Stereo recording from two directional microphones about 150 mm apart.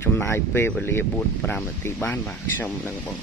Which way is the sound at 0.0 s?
15° left (ahead or behind).